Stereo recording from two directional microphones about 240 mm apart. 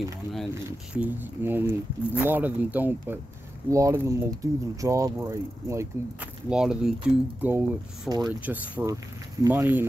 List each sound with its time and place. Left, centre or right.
0.7 s speech: centre